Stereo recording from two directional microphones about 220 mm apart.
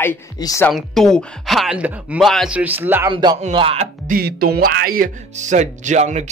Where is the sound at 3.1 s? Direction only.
20° right (ahead or behind).